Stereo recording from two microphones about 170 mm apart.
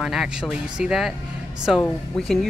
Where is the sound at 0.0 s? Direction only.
Centre (ahead or behind).